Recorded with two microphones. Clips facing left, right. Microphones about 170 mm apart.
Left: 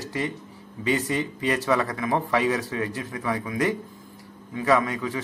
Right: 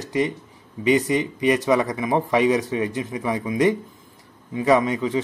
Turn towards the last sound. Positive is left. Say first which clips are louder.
# right 4 dB
turn(degrees=-20)  # may be behind; listen again after turning